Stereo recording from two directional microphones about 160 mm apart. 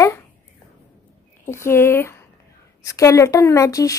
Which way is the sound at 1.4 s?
15° left (ahead or behind).